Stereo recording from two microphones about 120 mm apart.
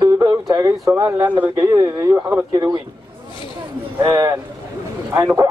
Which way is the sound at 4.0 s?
25° right (ahead or behind).